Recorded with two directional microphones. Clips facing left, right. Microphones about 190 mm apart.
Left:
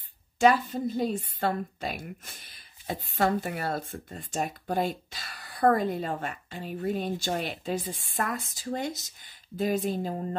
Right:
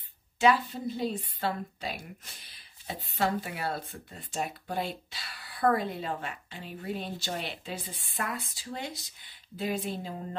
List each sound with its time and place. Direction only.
0.4 s speech: 45° left (ahead or behind)